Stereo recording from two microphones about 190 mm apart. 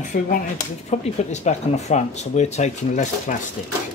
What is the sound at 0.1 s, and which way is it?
Speech, 50° left (ahead or behind).